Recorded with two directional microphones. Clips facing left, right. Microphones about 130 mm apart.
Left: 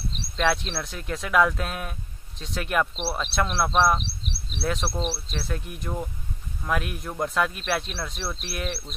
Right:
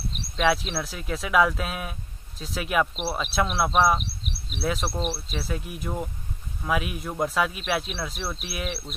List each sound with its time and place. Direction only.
0.4 s speech: centre (ahead or behind)
4.0 s a sound: 30° left (ahead or behind)
4.5 s speech: centre (ahead or behind)